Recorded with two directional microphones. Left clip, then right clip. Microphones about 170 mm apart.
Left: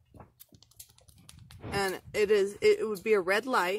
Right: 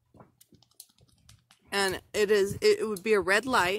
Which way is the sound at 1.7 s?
30° right (ahead or behind).